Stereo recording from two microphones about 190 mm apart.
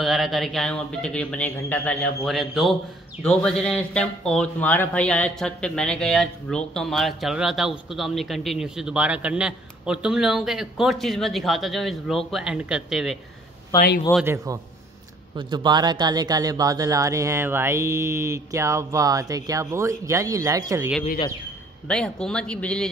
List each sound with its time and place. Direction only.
0.0 s speech: centre (ahead or behind)
13.7 s speech: 50° left (ahead or behind)
14.2 s speech: 15° right (ahead or behind)
21.8 s speech: 5° left (ahead or behind)